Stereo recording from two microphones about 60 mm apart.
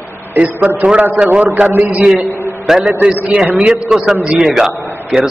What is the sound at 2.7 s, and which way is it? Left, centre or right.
A man's voice, centre.